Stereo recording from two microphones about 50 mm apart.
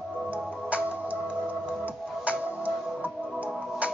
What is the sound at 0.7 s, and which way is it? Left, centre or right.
Music, right.